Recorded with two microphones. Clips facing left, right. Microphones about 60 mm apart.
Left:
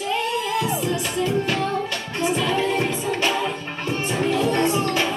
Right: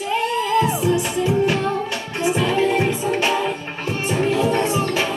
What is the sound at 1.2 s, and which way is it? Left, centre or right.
Music, centre.